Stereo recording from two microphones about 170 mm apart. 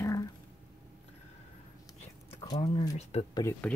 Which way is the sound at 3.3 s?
15° left (ahead or behind).